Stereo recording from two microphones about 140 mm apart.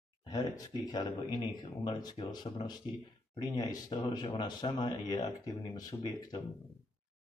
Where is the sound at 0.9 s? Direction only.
30° left (ahead or behind).